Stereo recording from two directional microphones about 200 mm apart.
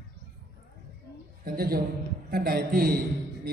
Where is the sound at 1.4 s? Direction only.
50° right (ahead or behind).